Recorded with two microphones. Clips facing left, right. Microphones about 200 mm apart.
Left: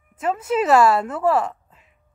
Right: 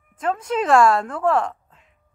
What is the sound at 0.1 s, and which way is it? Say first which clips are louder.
Speech: left 1 dB; 5° left (ahead or behind).